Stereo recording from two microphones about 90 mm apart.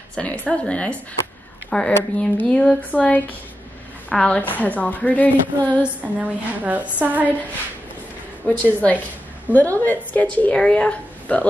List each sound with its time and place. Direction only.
0.1 s a woman's voice: 10° left (ahead or behind)
5.7 s a woman's voice: 15° right (ahead or behind)
8.5 s speech: 15° left (ahead or behind)